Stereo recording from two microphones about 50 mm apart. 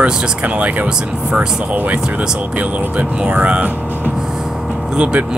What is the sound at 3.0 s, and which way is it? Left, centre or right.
Speech, right.